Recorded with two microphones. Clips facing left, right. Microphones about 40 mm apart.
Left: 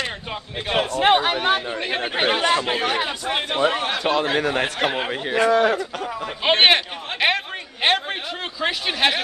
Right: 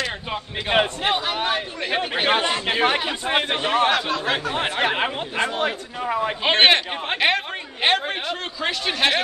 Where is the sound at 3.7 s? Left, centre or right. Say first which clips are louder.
Right 6 dB; right.